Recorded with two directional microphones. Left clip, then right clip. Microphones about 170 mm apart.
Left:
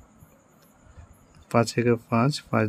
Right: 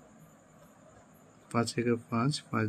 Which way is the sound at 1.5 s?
55° left (ahead or behind).